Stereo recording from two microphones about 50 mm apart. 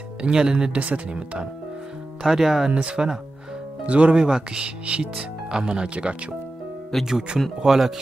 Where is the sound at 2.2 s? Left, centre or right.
Centre.